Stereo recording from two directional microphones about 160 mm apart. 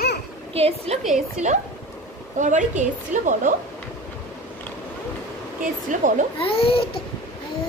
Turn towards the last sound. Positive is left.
turn(degrees=35)  # may be behind; listen again after turning